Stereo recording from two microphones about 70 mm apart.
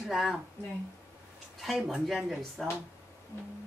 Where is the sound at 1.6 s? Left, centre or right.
Centre.